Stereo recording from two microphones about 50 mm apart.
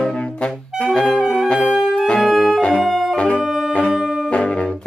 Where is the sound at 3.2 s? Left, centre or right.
Left.